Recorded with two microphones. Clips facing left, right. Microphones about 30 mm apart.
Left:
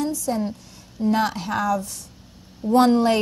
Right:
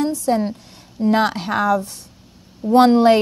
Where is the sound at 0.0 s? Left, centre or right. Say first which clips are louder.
Right 5 dB; right.